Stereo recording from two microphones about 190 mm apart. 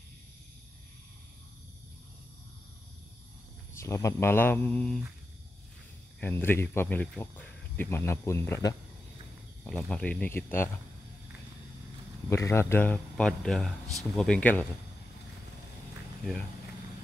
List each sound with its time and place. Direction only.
3.8 s speech: 15° left (ahead or behind)
6.2 s speech: 10° left (ahead or behind)
9.7 s speech: 5° left (ahead or behind)
12.3 s speech: 15° left (ahead or behind)